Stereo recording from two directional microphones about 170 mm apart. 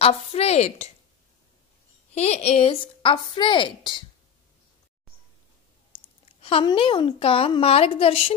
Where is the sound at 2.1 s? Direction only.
40° left (ahead or behind).